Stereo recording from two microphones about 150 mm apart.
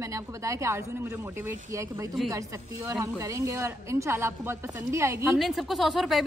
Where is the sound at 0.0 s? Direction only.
20° right (ahead or behind).